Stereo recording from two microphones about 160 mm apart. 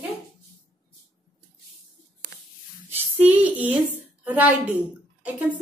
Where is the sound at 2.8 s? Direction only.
10° right (ahead or behind).